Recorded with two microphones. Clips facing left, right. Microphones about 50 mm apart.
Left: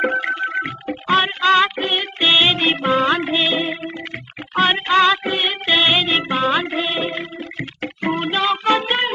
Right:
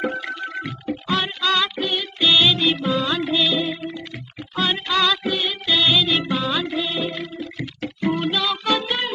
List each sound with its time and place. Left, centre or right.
0.0 s music: left